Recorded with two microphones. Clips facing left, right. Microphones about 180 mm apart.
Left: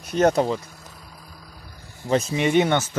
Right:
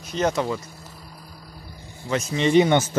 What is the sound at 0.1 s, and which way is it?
Speech, 10° left (ahead or behind).